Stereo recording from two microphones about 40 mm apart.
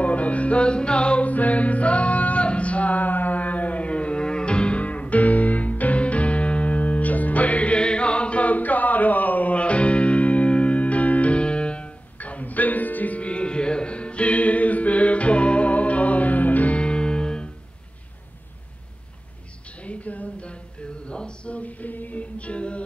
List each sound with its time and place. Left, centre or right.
0.0 s music: left
1.3 s music: left
12.2 s music: left
16.7 s music: left
19.8 s a sound: left
21.0 s a capella: left